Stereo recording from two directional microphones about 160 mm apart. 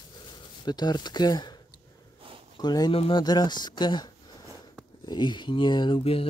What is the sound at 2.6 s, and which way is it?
Speech, 25° left (ahead or behind).